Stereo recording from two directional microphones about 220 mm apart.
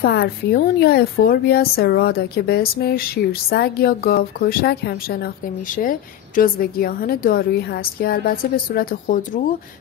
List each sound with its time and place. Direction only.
0.0 s a woman's voice: 45° left (ahead or behind)